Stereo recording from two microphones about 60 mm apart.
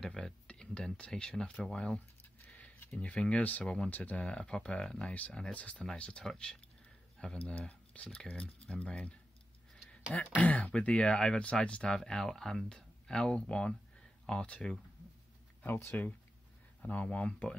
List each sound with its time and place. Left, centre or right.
0.0 s speech: centre
2.4 s a sound: left
2.8 s speech: left
7.3 s speech: left
15.6 s speech: left